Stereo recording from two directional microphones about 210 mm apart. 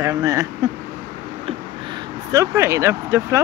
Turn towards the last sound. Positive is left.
turn(degrees=-10)  # may be behind; listen again after turning